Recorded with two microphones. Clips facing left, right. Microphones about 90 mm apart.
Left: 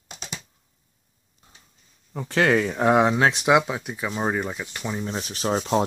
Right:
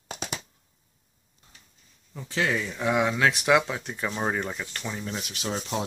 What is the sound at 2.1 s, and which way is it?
Speech, 60° left (ahead or behind).